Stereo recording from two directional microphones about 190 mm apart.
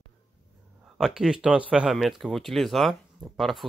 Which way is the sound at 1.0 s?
5° right (ahead or behind).